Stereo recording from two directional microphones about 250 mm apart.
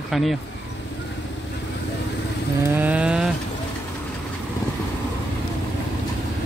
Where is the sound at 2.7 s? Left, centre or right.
Centre.